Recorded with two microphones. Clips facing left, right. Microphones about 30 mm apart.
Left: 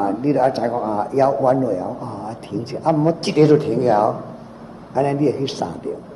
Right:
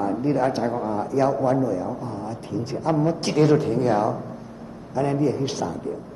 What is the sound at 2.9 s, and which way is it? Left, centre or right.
Speech, left.